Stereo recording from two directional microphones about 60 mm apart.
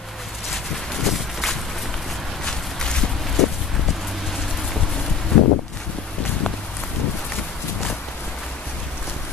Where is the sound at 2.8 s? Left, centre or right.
Centre.